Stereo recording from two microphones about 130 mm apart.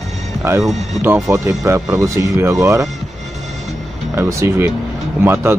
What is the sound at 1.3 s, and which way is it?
Speech, 20° right (ahead or behind).